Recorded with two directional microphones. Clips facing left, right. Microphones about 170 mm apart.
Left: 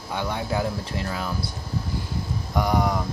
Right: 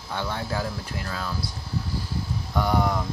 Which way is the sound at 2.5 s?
15° left (ahead or behind).